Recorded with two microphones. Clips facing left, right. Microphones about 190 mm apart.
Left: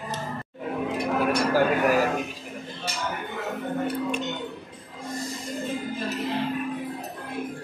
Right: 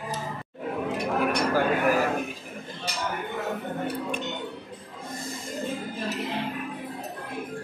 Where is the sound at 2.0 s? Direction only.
55° right (ahead or behind).